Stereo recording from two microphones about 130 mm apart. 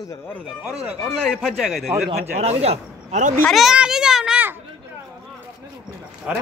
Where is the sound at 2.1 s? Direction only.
50° right (ahead or behind).